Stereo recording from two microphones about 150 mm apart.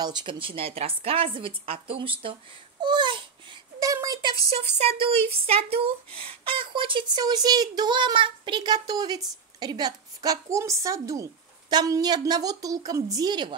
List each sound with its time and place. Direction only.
0.0 s speech: 30° right (ahead or behind)
2.8 s a sound: 30° right (ahead or behind)
4.6 s a woman's voice: 40° right (ahead or behind)